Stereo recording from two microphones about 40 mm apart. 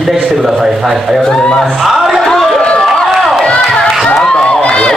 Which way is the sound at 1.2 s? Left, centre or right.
Centre.